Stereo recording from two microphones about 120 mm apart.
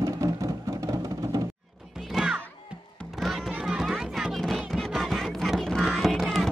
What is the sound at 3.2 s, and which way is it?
Music, centre (ahead or behind).